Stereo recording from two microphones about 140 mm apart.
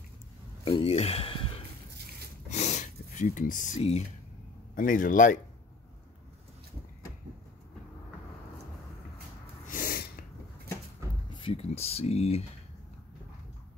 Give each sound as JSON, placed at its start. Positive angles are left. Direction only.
{"t": 0.7, "sound": "speech", "side_deg": 45}
{"t": 2.5, "sound": "a sound", "side_deg": 55}
{"t": 4.7, "sound": "speech", "side_deg": 75}
{"t": 9.7, "sound": "snort", "side_deg": 85}
{"t": 11.3, "sound": "speech", "side_deg": 40}